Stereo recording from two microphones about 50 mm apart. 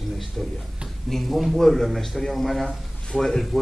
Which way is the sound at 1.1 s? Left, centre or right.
Centre.